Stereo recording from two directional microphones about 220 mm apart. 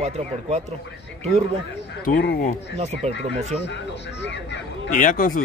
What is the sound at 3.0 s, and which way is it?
Speech, 30° right (ahead or behind).